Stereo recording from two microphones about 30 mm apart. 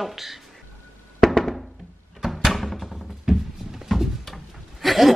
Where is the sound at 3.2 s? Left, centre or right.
Centre.